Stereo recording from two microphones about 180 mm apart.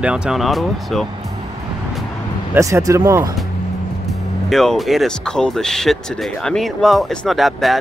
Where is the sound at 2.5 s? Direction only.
15° right (ahead or behind).